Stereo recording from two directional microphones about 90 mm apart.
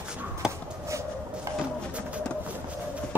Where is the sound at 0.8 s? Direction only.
35° right (ahead or behind).